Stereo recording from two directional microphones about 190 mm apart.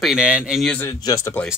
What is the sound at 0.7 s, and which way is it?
Speech, 20° left (ahead or behind).